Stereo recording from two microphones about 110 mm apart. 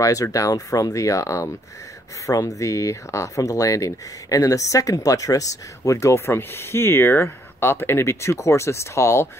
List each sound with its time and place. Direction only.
0.0 s speech: 30° left (ahead or behind)